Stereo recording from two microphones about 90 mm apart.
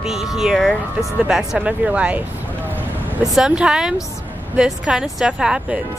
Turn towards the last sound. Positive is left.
turn(degrees=-10)  # may be behind; listen again after turning